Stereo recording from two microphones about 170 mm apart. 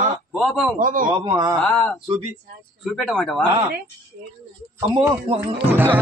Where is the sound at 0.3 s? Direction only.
Centre (ahead or behind).